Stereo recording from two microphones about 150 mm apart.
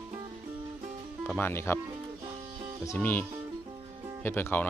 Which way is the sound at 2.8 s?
15° left (ahead or behind).